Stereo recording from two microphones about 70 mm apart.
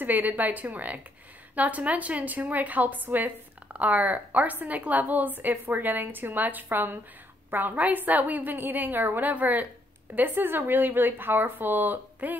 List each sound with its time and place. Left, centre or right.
0.0 s a woman's voice: right